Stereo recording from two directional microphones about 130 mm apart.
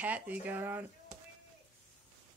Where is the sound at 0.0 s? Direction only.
10° right (ahead or behind).